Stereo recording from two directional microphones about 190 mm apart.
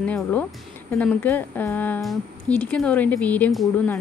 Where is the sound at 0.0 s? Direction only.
5° left (ahead or behind).